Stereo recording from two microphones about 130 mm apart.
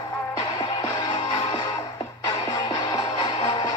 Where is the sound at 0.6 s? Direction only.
35° left (ahead or behind).